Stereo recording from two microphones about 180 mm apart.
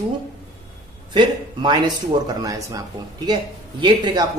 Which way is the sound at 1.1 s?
25° right (ahead or behind).